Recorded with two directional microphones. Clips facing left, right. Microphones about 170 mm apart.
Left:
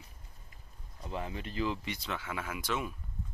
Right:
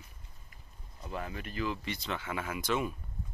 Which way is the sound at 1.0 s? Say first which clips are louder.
Left 1 dB; 20° left (ahead or behind).